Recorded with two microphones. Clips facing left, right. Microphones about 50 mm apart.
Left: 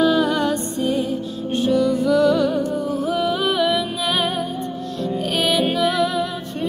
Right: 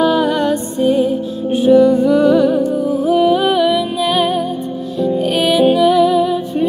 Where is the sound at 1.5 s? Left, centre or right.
Centre.